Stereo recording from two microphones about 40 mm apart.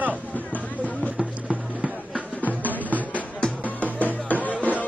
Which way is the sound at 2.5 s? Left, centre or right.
Right.